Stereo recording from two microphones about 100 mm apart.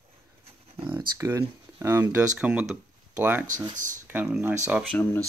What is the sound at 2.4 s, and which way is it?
Speech, 10° right (ahead or behind).